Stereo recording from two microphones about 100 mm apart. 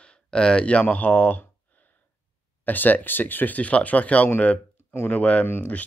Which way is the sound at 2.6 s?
20° left (ahead or behind).